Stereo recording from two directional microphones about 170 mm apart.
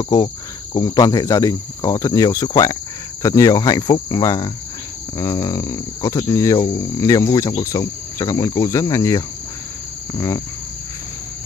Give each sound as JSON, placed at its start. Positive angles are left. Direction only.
{"t": 0.0, "sound": "speech", "side_deg": 20}